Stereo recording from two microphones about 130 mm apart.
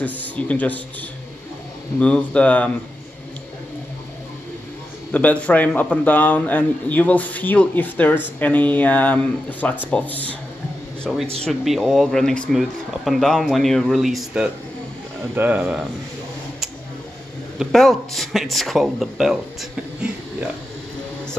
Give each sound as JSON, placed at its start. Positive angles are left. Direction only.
{"t": 0.0, "sound": "a man's voice", "side_deg": 10}
{"t": 2.0, "sound": "a man's voice", "side_deg": 10}
{"t": 5.1, "sound": "a man's voice", "side_deg": 10}
{"t": 11.1, "sound": "speech", "side_deg": 0}
{"t": 17.6, "sound": "speech", "side_deg": 0}